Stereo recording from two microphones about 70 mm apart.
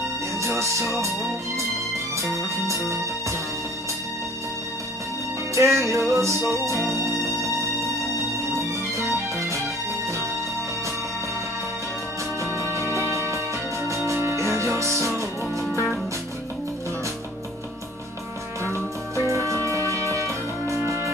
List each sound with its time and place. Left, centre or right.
0.4 s music: right
2.1 s music: right
5.5 s music: right
8.5 s music: right
12.4 s music: right
19.1 s music: right